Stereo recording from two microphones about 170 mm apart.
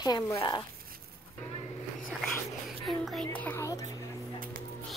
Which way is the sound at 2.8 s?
Centre (ahead or behind).